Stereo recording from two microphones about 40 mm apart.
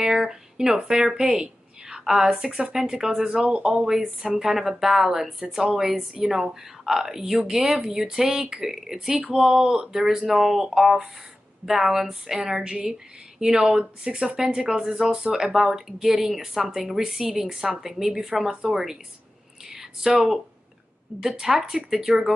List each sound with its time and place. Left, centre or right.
0.0 s a woman's voice: centre
3.4 s speech: right
3.7 s speech: centre
19.6 s a sound: centre
21.2 s speech: centre